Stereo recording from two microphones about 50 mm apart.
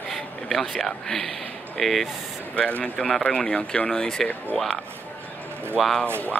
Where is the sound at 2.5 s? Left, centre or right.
Left.